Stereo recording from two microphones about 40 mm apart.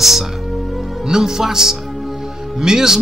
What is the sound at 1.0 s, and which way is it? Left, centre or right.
Speech, centre.